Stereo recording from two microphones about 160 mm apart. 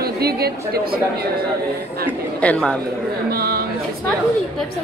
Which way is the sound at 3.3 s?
70° right (ahead or behind).